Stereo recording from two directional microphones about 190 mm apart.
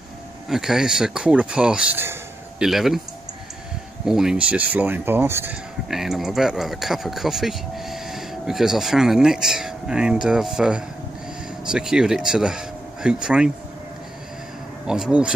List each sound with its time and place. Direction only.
0.5 s speech: centre (ahead or behind)
4.0 s speech: 5° right (ahead or behind)
14.9 s speech: 5° right (ahead or behind)